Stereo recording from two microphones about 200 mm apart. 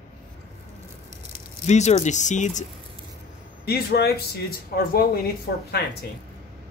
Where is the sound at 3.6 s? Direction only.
55° left (ahead or behind).